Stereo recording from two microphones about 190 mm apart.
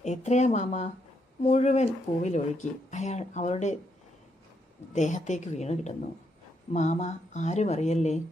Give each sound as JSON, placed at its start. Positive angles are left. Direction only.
{"t": 0.0, "sound": "speech", "side_deg": 40}
{"t": 4.9, "sound": "speech", "side_deg": 40}